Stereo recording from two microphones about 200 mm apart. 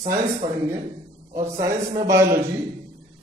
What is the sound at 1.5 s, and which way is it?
Speech, 15° right (ahead or behind).